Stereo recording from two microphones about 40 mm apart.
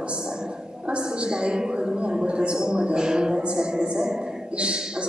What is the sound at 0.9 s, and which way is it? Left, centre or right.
A woman's voice, right.